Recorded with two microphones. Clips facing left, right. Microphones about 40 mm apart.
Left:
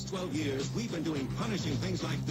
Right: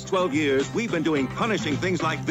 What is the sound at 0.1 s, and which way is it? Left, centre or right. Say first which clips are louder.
A man's voice: right 13 dB; right.